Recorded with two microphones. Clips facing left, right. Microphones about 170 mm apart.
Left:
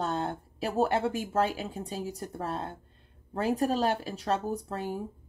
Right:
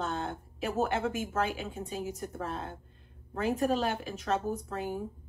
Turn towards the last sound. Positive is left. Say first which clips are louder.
# left 1 dB
turn(degrees=35)  # may be behind; listen again after turning